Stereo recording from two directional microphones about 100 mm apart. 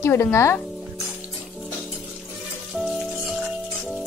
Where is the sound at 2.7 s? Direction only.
Centre (ahead or behind).